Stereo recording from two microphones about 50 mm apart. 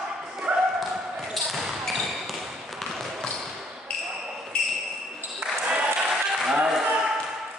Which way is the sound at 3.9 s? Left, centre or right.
Centre.